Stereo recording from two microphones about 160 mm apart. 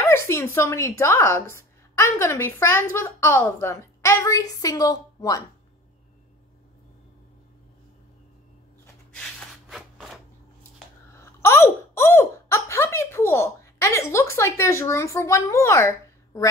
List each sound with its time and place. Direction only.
0.0 s a woman's voice: 15° left (ahead or behind)
9.1 s a sound: centre (ahead or behind)
11.1 s speech: 15° left (ahead or behind)